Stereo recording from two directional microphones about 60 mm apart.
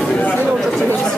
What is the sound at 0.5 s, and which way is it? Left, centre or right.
Chatter, centre.